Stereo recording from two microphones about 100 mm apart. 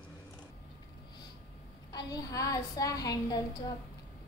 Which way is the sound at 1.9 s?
40° left (ahead or behind).